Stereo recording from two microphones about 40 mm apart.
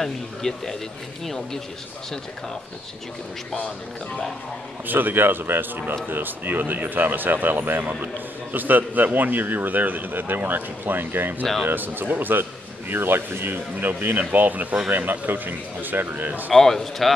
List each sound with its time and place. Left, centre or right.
0.0 s speech: centre
4.8 s a man's voice: right
12.9 s a man's voice: right
16.5 s speech: centre